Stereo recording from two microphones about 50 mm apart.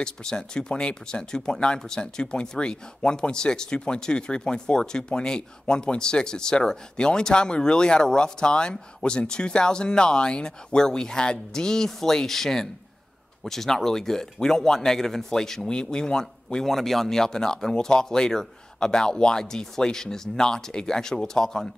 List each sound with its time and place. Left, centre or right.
0.0 s speech: centre
16.6 s speech: centre